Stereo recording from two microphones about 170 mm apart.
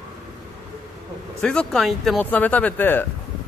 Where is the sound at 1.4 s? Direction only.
5° left (ahead or behind).